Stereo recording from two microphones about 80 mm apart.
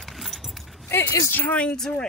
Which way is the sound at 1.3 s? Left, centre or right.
Left.